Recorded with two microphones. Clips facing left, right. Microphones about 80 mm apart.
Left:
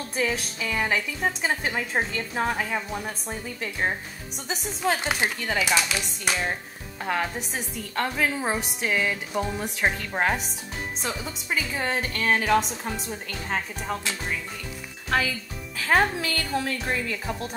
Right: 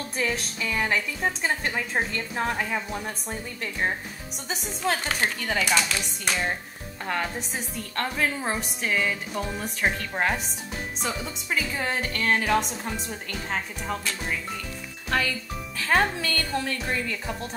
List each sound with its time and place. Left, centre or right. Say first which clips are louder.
0.1 s speech: left 2 dB; centre
4.9 s a woman's voice: left 1 dB; centre
15.0 s speech: left 1 dB; centre